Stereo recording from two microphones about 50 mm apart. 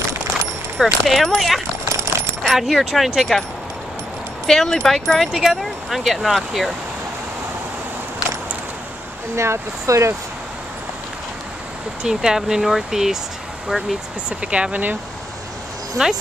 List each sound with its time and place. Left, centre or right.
0.7 s speech: centre
1.9 s coin: right
2.5 s speech: centre
4.5 s speech: centre
5.2 s speech: centre
9.3 s speech: right
12.0 s speech: centre
14.4 s speech: right
16.0 s speech: centre